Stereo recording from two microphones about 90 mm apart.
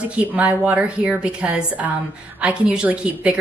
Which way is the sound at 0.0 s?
15° right (ahead or behind).